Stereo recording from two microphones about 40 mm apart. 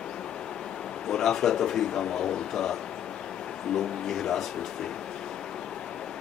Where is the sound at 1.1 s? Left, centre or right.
Centre.